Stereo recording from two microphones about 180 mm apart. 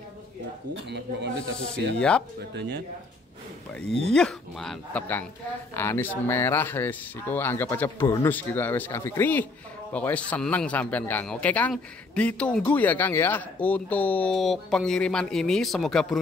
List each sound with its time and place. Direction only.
0.8 s a man's voice: 70° right (ahead or behind)
2.0 s speech: 5° left (ahead or behind)
4.1 s a man's voice: 5° left (ahead or behind)